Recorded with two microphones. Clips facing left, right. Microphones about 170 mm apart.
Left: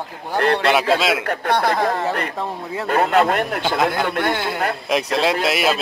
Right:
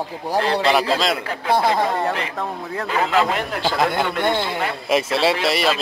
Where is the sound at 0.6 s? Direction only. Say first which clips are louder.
Left 1 dB; centre (ahead or behind).